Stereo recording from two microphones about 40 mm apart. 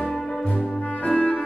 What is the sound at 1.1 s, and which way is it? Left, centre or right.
Music, left.